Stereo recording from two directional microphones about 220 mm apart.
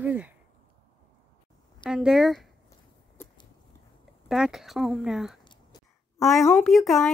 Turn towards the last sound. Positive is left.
turn(degrees=0)  # may be behind; listen again after turning